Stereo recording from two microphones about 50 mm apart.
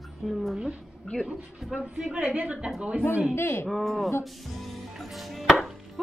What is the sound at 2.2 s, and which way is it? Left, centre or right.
Speech, right.